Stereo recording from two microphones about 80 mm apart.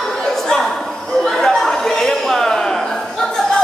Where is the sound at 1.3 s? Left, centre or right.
Centre.